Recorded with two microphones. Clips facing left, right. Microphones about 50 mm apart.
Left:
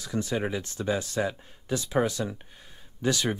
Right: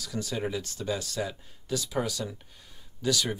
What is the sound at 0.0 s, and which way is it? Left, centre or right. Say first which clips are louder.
Speech: left 3 dB; left.